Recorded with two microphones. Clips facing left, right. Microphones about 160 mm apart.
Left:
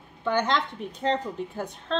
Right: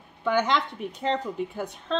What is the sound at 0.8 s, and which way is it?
A woman's voice, 5° right (ahead or behind).